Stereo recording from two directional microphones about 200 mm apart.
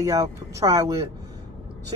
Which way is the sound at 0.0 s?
15° right (ahead or behind).